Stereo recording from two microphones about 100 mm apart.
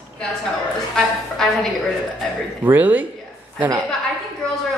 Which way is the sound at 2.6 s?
15° right (ahead or behind).